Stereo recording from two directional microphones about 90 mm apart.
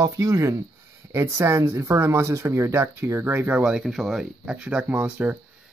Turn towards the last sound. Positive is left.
turn(degrees=-20)  # may be behind; listen again after turning